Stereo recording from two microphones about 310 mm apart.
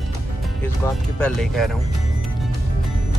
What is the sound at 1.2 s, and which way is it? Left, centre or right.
Speech, centre.